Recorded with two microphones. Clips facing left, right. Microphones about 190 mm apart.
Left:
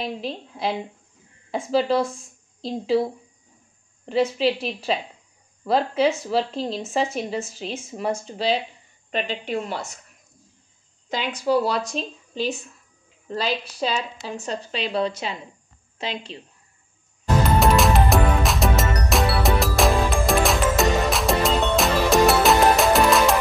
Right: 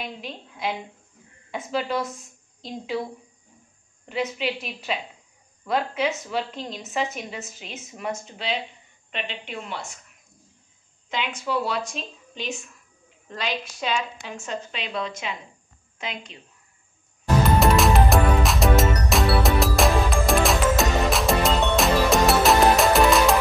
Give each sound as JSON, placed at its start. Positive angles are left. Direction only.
{"t": 0.0, "sound": "speech", "side_deg": 30}
{"t": 11.1, "sound": "speech", "side_deg": 35}
{"t": 17.6, "sound": "music", "side_deg": 0}